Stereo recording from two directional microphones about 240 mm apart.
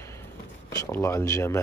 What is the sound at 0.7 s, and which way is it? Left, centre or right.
Speech, centre.